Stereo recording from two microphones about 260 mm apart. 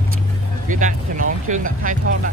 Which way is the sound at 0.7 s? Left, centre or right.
Right.